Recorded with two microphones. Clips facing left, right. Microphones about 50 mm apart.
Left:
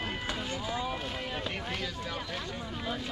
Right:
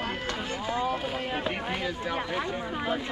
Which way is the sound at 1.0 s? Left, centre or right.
Centre.